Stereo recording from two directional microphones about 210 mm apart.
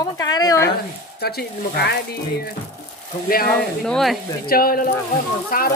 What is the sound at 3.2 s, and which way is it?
Speech, 45° left (ahead or behind).